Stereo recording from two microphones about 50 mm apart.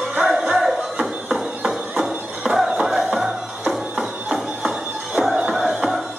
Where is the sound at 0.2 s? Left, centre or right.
Centre.